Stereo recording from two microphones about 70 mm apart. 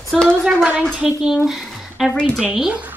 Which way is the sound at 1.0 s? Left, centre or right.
Centre.